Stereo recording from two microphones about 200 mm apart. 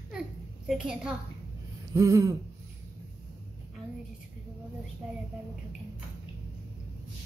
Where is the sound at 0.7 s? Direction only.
5° right (ahead or behind).